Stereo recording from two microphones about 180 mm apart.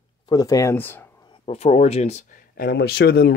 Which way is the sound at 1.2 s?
30° left (ahead or behind).